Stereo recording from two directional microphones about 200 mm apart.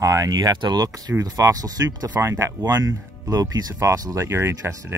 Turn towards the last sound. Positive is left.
turn(degrees=-15)  # may be behind; listen again after turning